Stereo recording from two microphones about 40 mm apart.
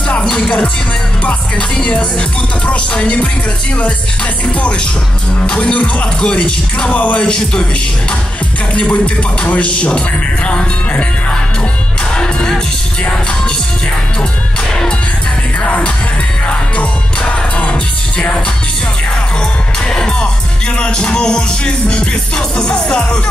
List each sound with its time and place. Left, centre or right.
0.2 s music: centre
1.8 s speech: left
5.5 s speech: left
6.2 s speech: left
6.9 s speech: left
7.2 s speech: left
8.7 s speech: left
12.2 s music: centre
15.6 s music: left
17.3 s music: left
19.9 s music: centre
20.8 s speech: left